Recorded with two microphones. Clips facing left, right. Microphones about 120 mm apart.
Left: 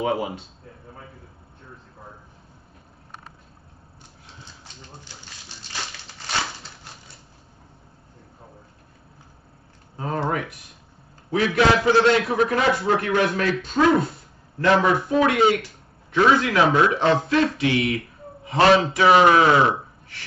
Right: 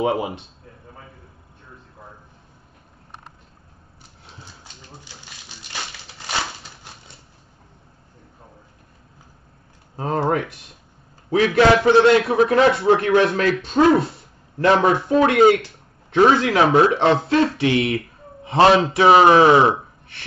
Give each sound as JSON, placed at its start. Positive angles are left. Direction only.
{"t": 0.0, "sound": "speech", "side_deg": -20}
{"t": 9.9, "sound": "speech", "side_deg": -30}
{"t": 11.5, "sound": "speech", "side_deg": -25}
{"t": 16.3, "sound": "speech", "side_deg": -25}